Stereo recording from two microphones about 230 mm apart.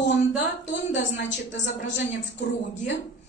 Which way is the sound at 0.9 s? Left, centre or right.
Left.